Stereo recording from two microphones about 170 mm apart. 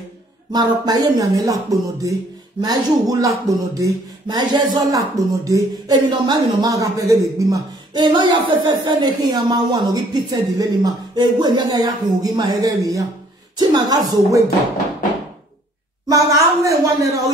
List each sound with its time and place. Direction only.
0.5 s speech: 25° right (ahead or behind)
16.1 s speech: 20° right (ahead or behind)